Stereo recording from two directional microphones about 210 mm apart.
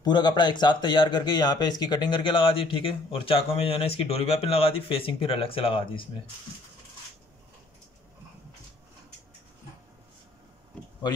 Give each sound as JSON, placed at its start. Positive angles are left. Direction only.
{"t": 0.0, "sound": "speech", "side_deg": 20}